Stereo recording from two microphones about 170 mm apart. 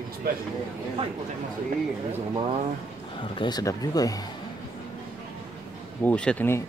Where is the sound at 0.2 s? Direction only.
65° right (ahead or behind).